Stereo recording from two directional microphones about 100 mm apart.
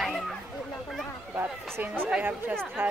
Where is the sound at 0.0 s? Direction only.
Centre (ahead or behind).